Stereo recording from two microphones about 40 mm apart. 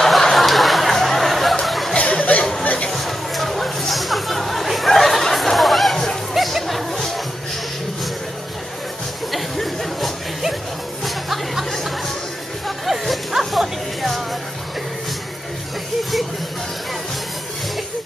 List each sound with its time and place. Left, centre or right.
0.0 s a sound: centre
2.0 s a sound: left
2.6 s chatter: left
2.9 s chatter: centre
5.3 s a sound: centre
6.3 s chatter: centre
9.3 s music: centre
11.1 s chatter: centre
12.6 s music: centre